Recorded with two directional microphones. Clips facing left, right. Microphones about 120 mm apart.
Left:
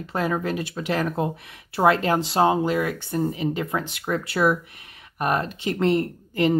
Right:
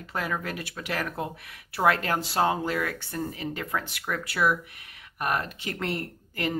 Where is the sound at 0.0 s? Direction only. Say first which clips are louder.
Left 6 dB; 30° left (ahead or behind).